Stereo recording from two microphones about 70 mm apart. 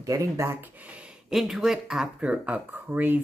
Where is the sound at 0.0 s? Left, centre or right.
Right.